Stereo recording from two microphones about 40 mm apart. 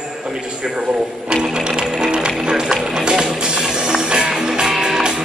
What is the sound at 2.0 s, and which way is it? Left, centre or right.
Music, right.